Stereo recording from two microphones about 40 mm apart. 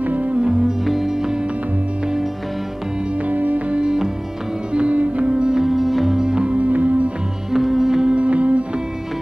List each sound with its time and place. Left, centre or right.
0.0 s music: right
0.4 s music: centre
0.8 s music: centre
3.3 s music: right
3.7 s music: right
4.7 s music: right
5.6 s music: centre
6.1 s music: right
6.5 s music: right
7.5 s music: centre
8.1 s music: right